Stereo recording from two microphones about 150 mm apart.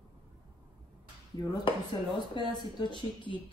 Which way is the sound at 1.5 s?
35° left (ahead or behind).